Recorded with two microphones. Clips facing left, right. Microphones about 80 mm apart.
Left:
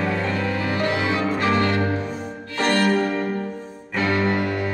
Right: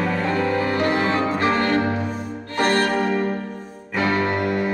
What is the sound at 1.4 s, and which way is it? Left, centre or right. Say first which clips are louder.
Music: even; right.